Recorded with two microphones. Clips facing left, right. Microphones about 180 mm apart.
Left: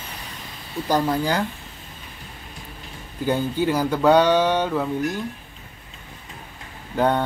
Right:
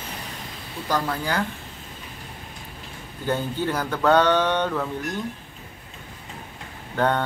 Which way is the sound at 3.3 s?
10° left (ahead or behind).